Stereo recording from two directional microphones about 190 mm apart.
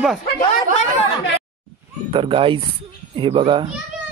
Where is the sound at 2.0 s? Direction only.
30° right (ahead or behind).